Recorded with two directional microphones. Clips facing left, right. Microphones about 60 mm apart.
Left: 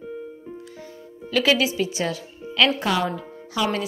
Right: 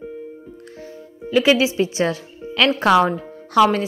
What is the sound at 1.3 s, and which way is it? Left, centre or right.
Speech, centre.